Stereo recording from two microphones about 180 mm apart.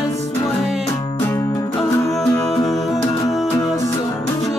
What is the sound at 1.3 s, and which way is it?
Music, 20° left (ahead or behind).